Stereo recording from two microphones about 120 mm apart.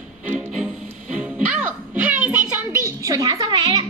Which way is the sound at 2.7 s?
30° right (ahead or behind).